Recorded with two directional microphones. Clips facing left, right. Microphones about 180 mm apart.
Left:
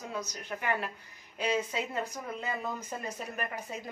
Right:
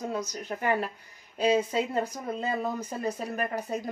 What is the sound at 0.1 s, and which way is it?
A woman's voice, 40° right (ahead or behind).